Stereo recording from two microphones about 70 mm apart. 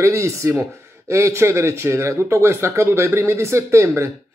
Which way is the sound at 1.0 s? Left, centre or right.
Right.